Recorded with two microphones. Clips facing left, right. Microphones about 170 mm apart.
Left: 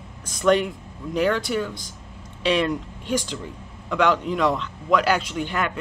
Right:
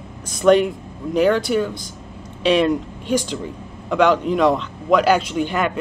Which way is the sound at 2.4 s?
20° right (ahead or behind).